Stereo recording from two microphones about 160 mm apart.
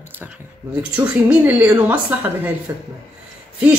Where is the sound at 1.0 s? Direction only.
10° right (ahead or behind).